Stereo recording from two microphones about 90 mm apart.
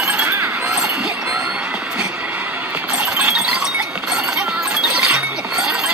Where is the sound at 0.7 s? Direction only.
5° right (ahead or behind).